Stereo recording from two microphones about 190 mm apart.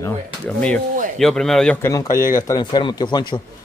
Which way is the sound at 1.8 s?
15° left (ahead or behind).